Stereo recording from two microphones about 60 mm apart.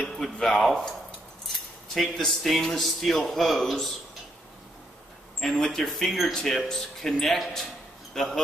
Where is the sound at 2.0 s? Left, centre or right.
Centre.